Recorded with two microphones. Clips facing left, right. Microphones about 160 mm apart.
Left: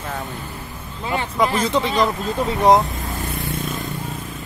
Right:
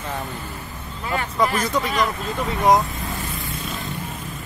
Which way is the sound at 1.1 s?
20° left (ahead or behind).